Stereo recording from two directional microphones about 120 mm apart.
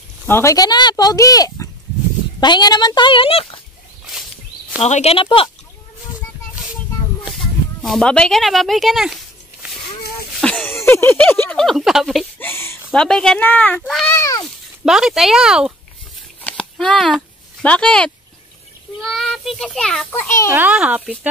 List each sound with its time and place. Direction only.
0.3 s speech: 25° left (ahead or behind); by 3.6 s 50° left (ahead or behind)
4.8 s speech: 60° left (ahead or behind)
7.2 s a sound: centre (ahead or behind)
10.3 s a sound: 10° left (ahead or behind)
10.7 s speech: 20° left (ahead or behind)
11.5 s speech: centre (ahead or behind)
12.4 s a sound: 20° left (ahead or behind)
12.9 s speech: 5° left (ahead or behind); by 14.4 s 25° left (ahead or behind)
14.4 s speech: 5° right (ahead or behind)
16.4 s a sound: 5° left (ahead or behind)
18.9 s a child's voice: centre (ahead or behind)
20.1 s a child's voice: 20° left (ahead or behind)
20.5 s a child's voice: 10° right (ahead or behind)